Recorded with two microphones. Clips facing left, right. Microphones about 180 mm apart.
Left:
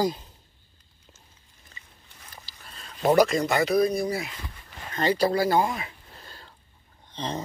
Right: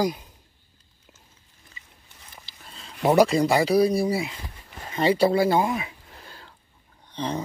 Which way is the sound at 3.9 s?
30° right (ahead or behind).